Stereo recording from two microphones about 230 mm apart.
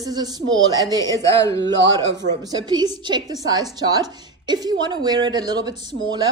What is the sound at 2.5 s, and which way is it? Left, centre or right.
A woman's voice, centre.